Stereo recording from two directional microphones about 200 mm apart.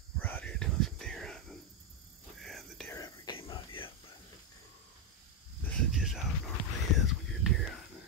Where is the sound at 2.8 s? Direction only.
20° left (ahead or behind).